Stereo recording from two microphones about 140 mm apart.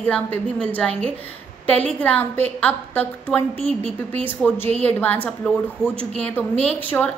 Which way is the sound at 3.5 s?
45° right (ahead or behind).